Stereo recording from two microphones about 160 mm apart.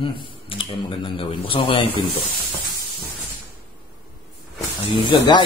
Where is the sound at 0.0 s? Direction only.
35° left (ahead or behind).